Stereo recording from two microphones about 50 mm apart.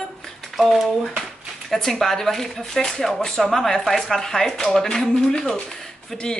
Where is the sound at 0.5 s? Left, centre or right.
Centre.